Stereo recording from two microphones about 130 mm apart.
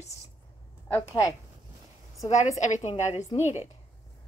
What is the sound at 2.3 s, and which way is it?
Speech, 65° left (ahead or behind).